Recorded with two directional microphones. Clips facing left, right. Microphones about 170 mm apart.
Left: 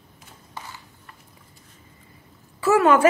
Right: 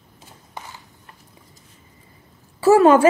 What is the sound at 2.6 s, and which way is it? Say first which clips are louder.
Speech: right 5 dB; 30° right (ahead or behind).